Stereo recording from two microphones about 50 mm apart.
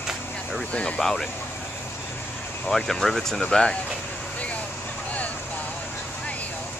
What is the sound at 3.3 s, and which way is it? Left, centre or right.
Speech, centre.